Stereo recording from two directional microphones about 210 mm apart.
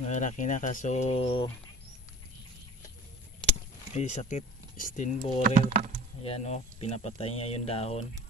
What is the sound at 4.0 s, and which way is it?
Speech, 35° left (ahead or behind).